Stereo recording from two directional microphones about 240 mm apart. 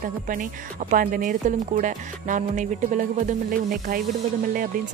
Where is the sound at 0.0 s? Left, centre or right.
Right.